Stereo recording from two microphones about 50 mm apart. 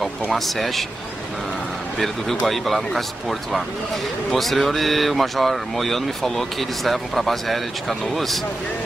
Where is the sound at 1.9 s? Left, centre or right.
Centre.